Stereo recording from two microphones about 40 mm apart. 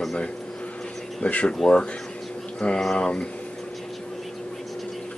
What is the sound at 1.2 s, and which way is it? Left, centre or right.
Speech, left.